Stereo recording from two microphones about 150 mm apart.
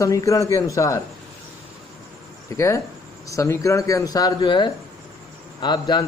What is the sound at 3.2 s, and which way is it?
Speech, 20° left (ahead or behind).